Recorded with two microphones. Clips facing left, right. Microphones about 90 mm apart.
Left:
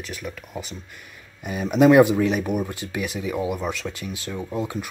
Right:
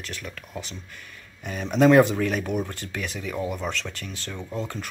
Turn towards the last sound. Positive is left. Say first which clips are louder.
# left 4 dB
turn(degrees=10)  # may be behind; listen again after turning